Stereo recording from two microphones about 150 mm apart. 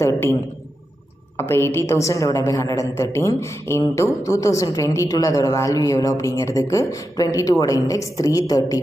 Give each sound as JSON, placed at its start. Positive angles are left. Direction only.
{"t": 0.0, "sound": "speech", "side_deg": 20}